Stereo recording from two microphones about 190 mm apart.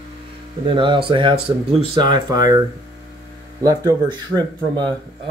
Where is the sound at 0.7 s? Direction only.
25° right (ahead or behind).